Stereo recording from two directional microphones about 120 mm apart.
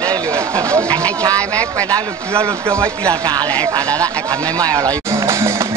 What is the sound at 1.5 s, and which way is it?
Speech, 10° left (ahead or behind).